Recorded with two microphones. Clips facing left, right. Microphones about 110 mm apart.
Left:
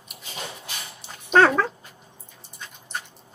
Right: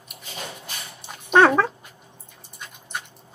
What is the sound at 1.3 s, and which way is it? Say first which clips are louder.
Dog: right 2 dB; 15° right (ahead or behind).